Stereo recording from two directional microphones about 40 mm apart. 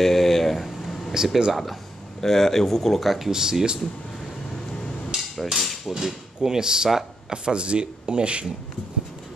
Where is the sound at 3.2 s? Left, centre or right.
Centre.